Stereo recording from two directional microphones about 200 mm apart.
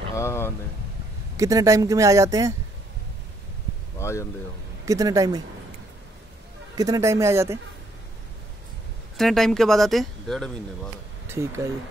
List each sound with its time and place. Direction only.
0.1 s speech: 15° left (ahead or behind)
1.3 s speech: 15° right (ahead or behind)
4.0 s speech: 15° left (ahead or behind)
4.8 s speech: 15° right (ahead or behind)
6.7 s speech: 20° right (ahead or behind)
9.1 s speech: centre (ahead or behind)
11.2 s speech: 10° right (ahead or behind)